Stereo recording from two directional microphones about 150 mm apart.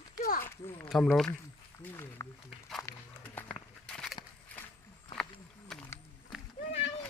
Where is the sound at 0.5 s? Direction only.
15° left (ahead or behind).